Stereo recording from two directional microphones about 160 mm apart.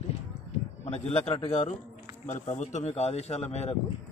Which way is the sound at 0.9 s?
40° left (ahead or behind).